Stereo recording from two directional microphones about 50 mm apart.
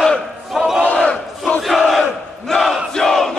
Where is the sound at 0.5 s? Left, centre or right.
Centre.